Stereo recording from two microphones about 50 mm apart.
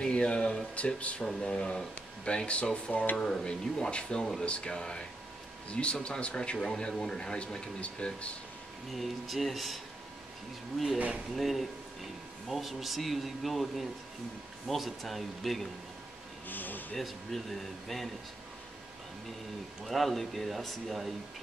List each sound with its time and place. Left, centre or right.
0.0 s speech: left
8.9 s speech: centre
11.3 s speech: centre
16.4 s speech: left
16.9 s speech: centre
19.8 s speech: centre